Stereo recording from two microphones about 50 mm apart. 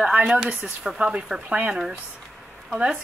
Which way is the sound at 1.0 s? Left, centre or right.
Right.